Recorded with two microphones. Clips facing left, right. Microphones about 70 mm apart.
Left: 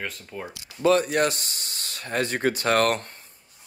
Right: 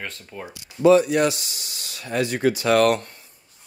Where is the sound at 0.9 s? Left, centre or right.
Left.